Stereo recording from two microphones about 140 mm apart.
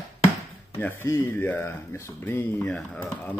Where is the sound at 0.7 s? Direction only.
15° left (ahead or behind).